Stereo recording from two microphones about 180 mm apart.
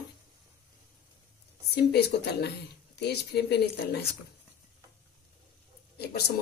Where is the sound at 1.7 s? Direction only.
65° left (ahead or behind).